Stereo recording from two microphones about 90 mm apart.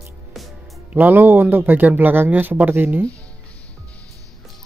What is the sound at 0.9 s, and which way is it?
A man's voice, 20° right (ahead or behind).